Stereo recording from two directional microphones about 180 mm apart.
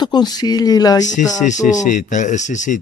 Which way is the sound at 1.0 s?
45° left (ahead or behind).